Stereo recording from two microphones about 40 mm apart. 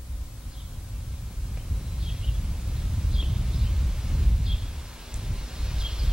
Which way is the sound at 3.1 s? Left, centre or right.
Centre.